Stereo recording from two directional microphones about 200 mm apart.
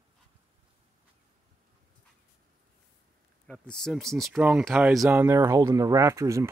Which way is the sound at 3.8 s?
Centre (ahead or behind).